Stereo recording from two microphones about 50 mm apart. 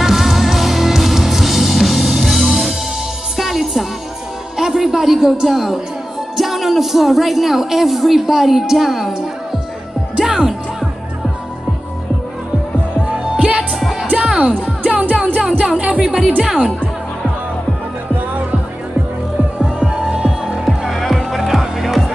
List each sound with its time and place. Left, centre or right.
0.0 s music: centre
4.6 s a sound: centre
6.3 s speech: centre
13.7 s music: centre
14.1 s music: centre
14.6 s music: right
16.0 s a woman's voice: centre
19.6 s music: centre
20.2 s music: centre